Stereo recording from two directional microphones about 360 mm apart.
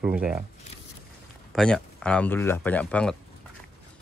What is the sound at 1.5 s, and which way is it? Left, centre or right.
A man's voice, centre.